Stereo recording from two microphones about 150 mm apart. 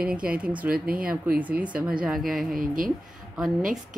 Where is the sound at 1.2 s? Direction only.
10° right (ahead or behind).